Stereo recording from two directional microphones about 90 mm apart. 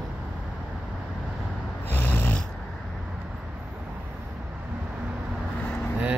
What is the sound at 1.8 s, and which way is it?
Snoring, 20° left (ahead or behind).